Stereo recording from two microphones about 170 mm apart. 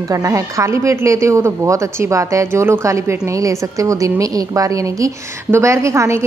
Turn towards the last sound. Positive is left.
turn(degrees=-15)  # may be behind; listen again after turning